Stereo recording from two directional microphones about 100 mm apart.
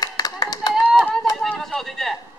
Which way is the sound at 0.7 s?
5° right (ahead or behind).